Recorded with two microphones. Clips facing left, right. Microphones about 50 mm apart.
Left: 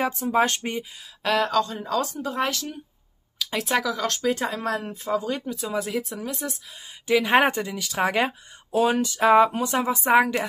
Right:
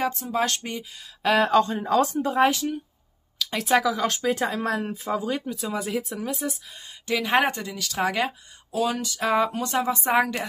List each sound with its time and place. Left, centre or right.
0.0 s speech: left
1.2 s speech: centre
1.5 s speech: right
2.3 s speech: centre
3.3 s speech: centre
7.1 s a woman's voice: centre
8.7 s a woman's voice: left; by 10.4 s centre